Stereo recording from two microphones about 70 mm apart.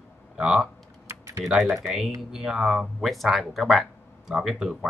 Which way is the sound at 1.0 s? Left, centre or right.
Right.